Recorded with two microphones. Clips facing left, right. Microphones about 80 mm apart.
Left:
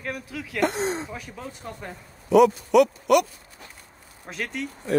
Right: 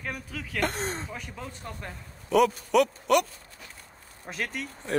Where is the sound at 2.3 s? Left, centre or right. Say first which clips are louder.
Left 5 dB; left.